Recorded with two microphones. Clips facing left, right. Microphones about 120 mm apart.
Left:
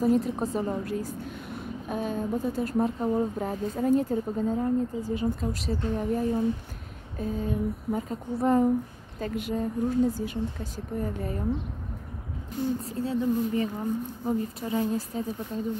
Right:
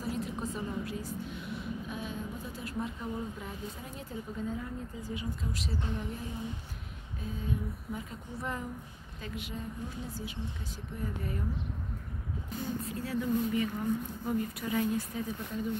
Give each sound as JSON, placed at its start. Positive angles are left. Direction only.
{"t": 0.0, "sound": "a woman's voice", "side_deg": 45}
{"t": 12.8, "sound": "speech", "side_deg": 25}